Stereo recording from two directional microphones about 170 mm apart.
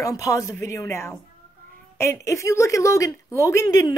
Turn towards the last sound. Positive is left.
turn(degrees=20)  # may be behind; listen again after turning